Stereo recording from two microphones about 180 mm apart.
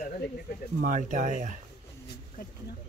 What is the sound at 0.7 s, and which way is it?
Speech, 45° right (ahead or behind).